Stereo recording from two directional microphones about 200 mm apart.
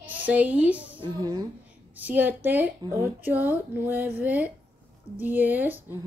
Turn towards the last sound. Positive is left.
turn(degrees=-10)  # may be behind; listen again after turning